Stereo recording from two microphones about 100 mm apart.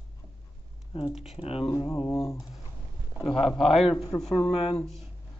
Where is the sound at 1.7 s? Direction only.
35° left (ahead or behind).